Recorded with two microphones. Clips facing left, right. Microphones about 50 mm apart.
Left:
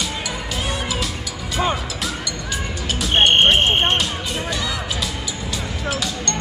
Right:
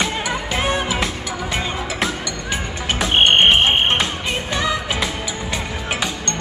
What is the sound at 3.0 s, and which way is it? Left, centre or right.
Music, right.